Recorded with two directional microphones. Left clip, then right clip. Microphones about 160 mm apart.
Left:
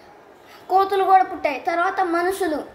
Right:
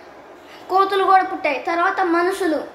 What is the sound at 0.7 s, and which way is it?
A woman's voice, 25° left (ahead or behind).